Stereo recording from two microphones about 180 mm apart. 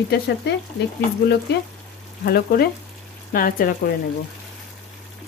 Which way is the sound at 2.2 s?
60° left (ahead or behind).